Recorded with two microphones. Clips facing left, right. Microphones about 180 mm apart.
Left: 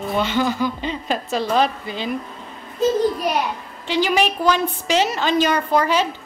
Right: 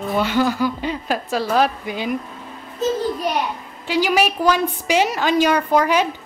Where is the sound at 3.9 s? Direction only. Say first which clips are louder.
Right 1 dB; 10° right (ahead or behind).